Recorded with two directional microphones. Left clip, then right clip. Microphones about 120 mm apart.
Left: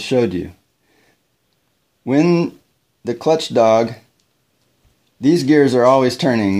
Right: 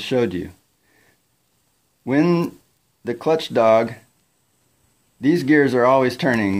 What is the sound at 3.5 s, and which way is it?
Speech, 45° left (ahead or behind).